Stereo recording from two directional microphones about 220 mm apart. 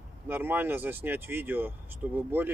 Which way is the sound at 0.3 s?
10° right (ahead or behind).